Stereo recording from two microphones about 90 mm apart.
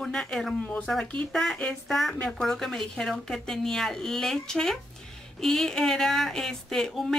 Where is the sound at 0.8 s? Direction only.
5° left (ahead or behind).